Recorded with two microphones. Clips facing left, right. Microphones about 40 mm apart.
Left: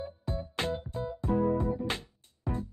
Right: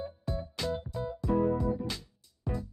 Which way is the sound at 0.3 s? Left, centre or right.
Left.